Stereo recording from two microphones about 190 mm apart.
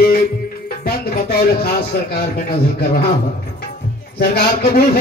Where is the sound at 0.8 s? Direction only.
55° left (ahead or behind).